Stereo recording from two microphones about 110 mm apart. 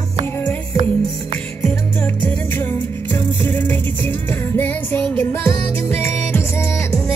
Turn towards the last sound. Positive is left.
turn(degrees=20)  # may be behind; listen again after turning